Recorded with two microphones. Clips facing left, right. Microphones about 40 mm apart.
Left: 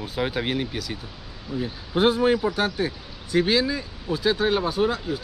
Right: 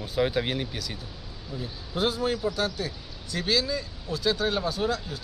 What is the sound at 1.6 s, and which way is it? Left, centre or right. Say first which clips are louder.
Speech: left 7 dB; left.